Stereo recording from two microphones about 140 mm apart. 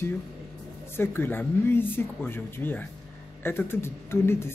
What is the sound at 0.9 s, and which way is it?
Speech, 15° left (ahead or behind).